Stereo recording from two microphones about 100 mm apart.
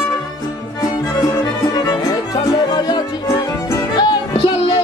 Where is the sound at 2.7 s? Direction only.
45° left (ahead or behind).